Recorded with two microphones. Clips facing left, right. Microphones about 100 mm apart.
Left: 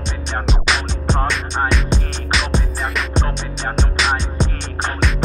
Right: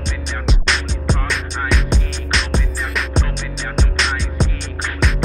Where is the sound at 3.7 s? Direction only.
Centre (ahead or behind).